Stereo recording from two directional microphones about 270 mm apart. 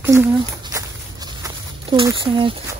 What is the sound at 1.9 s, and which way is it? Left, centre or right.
Speech, centre.